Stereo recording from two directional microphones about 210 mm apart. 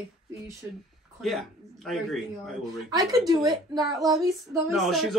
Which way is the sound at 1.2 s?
Centre (ahead or behind).